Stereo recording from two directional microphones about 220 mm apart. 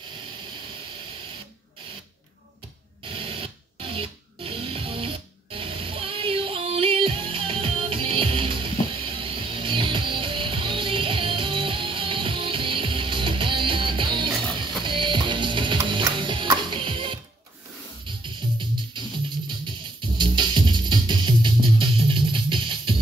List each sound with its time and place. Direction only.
3.1 s music: 25° right (ahead or behind)
19.6 s music: 20° right (ahead or behind)